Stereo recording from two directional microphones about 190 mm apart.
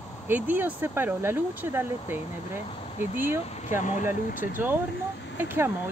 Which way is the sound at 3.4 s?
35° left (ahead or behind).